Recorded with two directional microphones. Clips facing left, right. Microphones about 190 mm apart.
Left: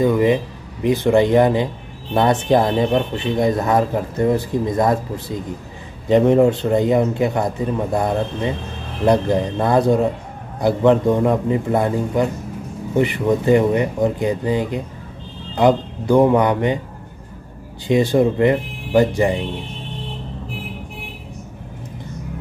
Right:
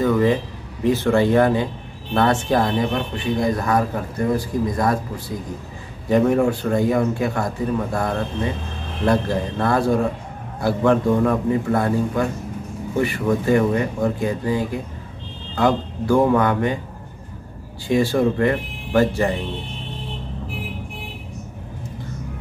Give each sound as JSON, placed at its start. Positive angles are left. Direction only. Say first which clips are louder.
{"t": 0.0, "sound": "speech", "louder": "left 2 dB", "side_deg": 15}
{"t": 17.8, "sound": "speech", "louder": "left 3 dB", "side_deg": 20}